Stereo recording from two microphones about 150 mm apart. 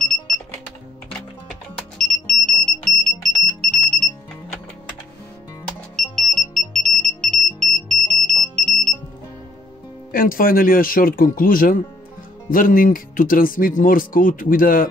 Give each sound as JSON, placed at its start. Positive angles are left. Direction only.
{"t": 2.0, "sound": "music", "side_deg": 0}
{"t": 3.0, "sound": "alarm", "side_deg": 0}
{"t": 5.9, "sound": "smoke detector", "side_deg": 0}
{"t": 10.1, "sound": "speech", "side_deg": 70}